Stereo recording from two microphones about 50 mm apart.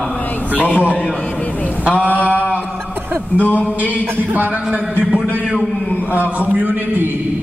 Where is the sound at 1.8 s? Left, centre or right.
Right.